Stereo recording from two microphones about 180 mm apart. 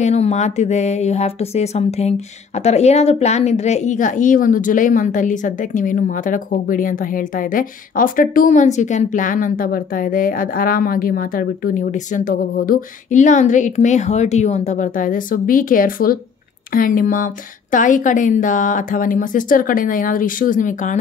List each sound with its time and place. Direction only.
0.0 s speech: 35° left (ahead or behind)